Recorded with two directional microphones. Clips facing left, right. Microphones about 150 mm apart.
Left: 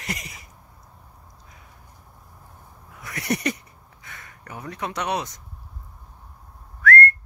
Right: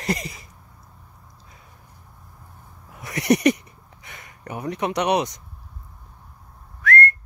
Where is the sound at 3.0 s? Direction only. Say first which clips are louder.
Right 7 dB; 20° right (ahead or behind).